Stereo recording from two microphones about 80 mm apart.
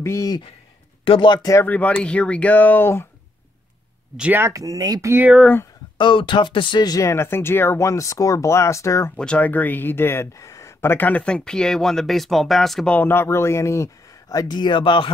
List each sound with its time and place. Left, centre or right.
0.0 s speech: left
1.0 s speech: left
1.6 s speech: left
4.3 s speech: right
5.9 s speech: left
7.0 s speech: left
9.1 s speech: centre
12.8 s speech: centre
13.1 s speech: left
14.5 s speech: left